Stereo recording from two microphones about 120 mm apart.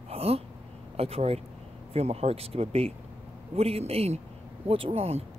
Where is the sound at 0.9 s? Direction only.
55° right (ahead or behind).